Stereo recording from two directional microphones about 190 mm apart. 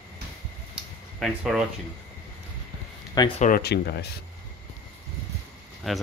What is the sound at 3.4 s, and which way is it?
Speech, 50° left (ahead or behind).